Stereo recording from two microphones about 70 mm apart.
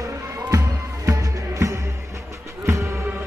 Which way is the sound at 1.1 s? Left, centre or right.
Right.